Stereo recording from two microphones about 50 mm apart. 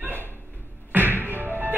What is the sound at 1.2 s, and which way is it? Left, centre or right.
Whack, right.